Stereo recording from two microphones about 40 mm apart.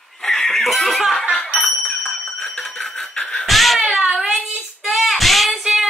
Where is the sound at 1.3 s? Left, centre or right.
Left.